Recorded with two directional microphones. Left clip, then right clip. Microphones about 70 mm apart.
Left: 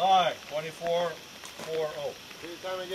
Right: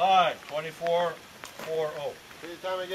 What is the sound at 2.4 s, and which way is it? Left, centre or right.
Speech, right.